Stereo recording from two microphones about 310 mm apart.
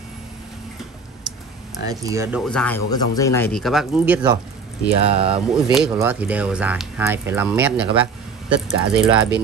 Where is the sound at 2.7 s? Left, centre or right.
Left.